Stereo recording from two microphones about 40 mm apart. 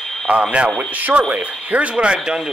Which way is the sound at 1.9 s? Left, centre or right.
Right.